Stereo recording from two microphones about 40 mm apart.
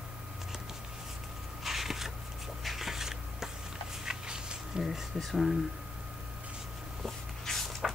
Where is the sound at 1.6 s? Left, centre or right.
Centre.